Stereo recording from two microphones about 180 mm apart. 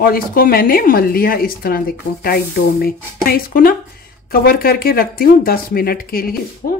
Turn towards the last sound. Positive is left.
turn(degrees=55)  # may be behind; listen again after turning